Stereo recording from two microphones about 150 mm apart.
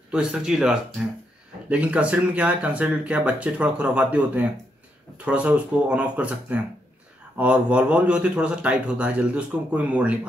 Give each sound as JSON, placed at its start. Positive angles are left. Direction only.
{"t": 0.1, "sound": "speech", "side_deg": -5}